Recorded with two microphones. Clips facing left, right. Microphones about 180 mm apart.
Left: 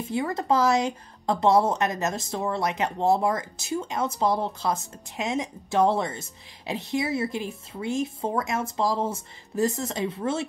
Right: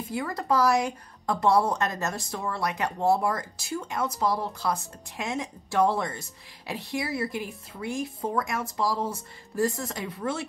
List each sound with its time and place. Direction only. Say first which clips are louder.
0.1 s a woman's voice: left 3 dB; 25° left (ahead or behind)